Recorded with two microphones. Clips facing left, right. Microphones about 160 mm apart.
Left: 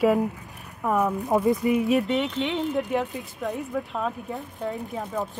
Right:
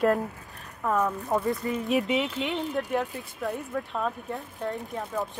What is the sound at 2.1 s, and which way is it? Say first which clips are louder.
Speech: left 2 dB; centre (ahead or behind).